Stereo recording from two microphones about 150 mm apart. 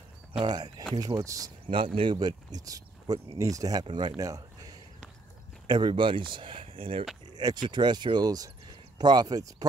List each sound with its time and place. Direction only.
0.3 s speech: 35° right (ahead or behind)
4.2 s a sound: 25° right (ahead or behind)
5.7 s speech: 30° right (ahead or behind)